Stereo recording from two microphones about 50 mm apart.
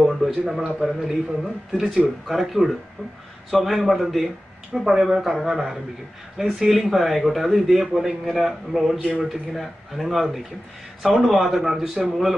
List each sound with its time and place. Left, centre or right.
0.1 s a man's voice: centre
6.4 s speech: centre
6.7 s a man's voice: centre